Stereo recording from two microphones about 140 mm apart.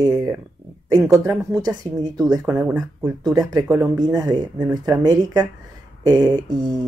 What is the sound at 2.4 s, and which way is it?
Speech, 10° right (ahead or behind).